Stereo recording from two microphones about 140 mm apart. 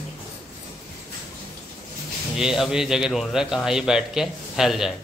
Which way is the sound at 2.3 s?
5° right (ahead or behind).